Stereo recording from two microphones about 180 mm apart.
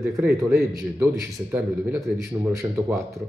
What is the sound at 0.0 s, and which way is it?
Speech, 10° right (ahead or behind).